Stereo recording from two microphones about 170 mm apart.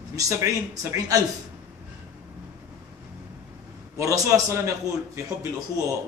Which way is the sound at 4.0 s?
20° right (ahead or behind).